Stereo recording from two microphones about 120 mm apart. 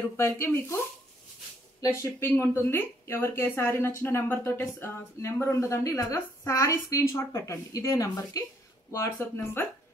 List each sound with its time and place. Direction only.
0.2 s speech: 20° left (ahead or behind)
1.8 s speech: 25° left (ahead or behind)